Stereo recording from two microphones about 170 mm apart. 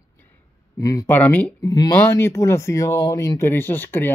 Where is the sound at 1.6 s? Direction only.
20° left (ahead or behind).